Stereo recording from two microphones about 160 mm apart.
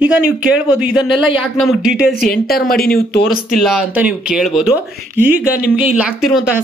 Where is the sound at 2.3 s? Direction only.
70° left (ahead or behind).